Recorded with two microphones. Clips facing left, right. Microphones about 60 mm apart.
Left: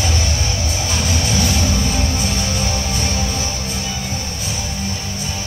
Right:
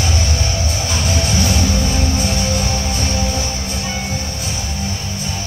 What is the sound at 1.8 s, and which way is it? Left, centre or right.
Music, centre.